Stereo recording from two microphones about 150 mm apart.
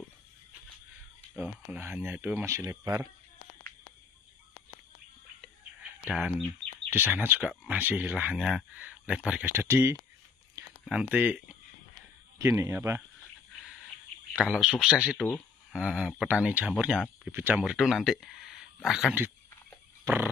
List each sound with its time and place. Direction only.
1.3 s speech: 10° right (ahead or behind)
6.0 s speech: 5° right (ahead or behind)
12.4 s speech: 20° right (ahead or behind)
14.3 s speech: 5° right (ahead or behind)